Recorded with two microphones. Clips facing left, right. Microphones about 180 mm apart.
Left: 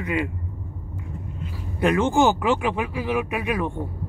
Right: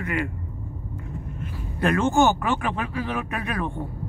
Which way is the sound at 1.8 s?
15° left (ahead or behind).